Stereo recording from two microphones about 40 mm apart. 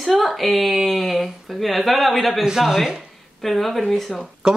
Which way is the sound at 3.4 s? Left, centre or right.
Centre.